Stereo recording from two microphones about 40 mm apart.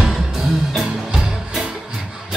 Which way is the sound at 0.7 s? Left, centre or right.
Centre.